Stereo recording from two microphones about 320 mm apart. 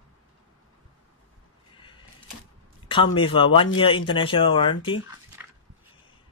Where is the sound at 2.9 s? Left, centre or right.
Centre.